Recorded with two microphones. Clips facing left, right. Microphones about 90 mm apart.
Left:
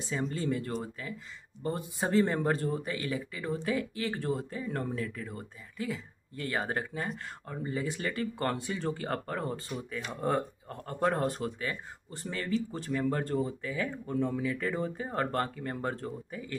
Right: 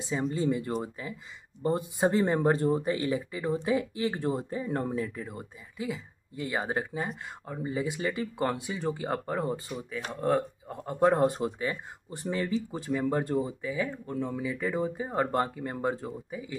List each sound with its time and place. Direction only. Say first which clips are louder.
0.1 s speech: right 4 dB; 20° right (ahead or behind)
13.8 s speech: left 1 dB; centre (ahead or behind)